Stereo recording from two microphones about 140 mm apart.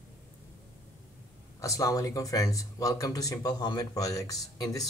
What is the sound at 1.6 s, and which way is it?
Speech, 25° left (ahead or behind).